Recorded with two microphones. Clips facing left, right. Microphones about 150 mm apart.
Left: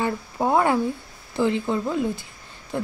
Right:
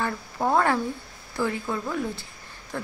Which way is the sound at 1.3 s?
20° left (ahead or behind).